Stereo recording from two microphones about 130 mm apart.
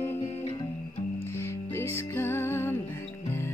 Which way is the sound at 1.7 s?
20° left (ahead or behind).